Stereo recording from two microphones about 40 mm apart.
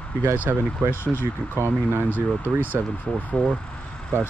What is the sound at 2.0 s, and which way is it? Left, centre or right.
Speech, left.